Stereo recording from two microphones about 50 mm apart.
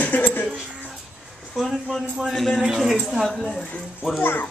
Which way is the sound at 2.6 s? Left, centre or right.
Centre.